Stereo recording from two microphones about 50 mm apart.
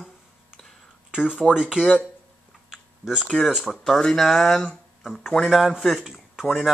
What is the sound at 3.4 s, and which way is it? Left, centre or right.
A man's voice, centre.